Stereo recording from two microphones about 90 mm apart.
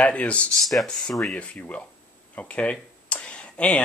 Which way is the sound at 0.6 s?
Centre (ahead or behind).